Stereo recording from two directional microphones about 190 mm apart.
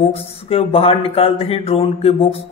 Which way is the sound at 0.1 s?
30° left (ahead or behind).